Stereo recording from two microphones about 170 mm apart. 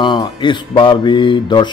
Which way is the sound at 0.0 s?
25° left (ahead or behind).